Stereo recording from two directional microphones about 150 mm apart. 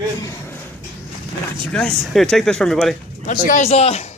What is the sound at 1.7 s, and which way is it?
A man's voice, 5° left (ahead or behind).